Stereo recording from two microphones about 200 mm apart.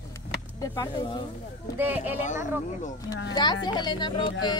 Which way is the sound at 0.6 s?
20° left (ahead or behind).